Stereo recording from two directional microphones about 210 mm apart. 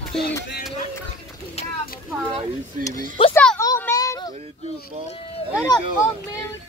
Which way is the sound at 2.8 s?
15° left (ahead or behind).